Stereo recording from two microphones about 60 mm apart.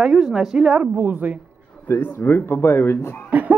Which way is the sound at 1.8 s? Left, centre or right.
Left.